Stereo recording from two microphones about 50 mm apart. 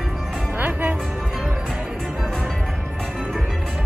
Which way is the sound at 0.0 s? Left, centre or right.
Centre.